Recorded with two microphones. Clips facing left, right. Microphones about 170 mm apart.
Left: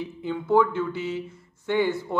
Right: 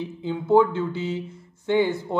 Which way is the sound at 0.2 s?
20° right (ahead or behind).